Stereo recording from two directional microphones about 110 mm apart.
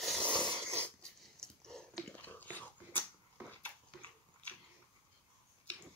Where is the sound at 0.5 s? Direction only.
20° right (ahead or behind).